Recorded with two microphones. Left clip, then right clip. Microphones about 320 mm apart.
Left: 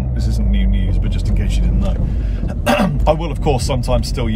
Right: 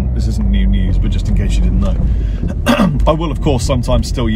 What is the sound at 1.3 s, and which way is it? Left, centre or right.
Speech, right.